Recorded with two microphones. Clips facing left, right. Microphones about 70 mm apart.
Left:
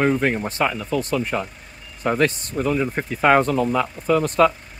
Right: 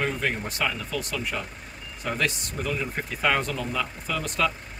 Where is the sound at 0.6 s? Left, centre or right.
Left.